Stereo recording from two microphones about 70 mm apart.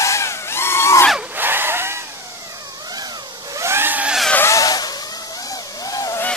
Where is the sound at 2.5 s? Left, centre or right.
Right.